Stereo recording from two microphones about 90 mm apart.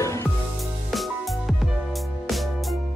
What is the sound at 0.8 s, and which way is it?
Music, centre (ahead or behind).